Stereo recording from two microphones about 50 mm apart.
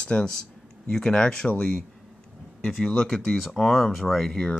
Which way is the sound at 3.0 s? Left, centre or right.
Centre.